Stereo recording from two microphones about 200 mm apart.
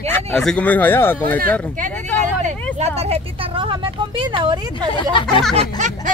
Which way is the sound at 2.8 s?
30° right (ahead or behind).